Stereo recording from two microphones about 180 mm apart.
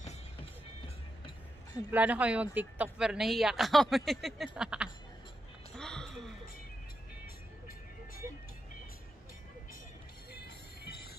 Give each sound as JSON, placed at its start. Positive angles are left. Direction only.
{"t": 0.8, "sound": "music", "side_deg": 25}
{"t": 1.9, "sound": "speech", "side_deg": -10}
{"t": 5.8, "sound": "a sound", "side_deg": 5}
{"t": 10.3, "sound": "music", "side_deg": 65}